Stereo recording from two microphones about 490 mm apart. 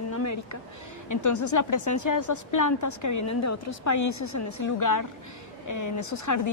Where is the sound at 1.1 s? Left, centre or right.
Left.